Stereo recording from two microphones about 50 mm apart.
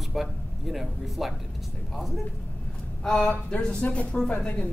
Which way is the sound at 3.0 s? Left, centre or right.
Centre.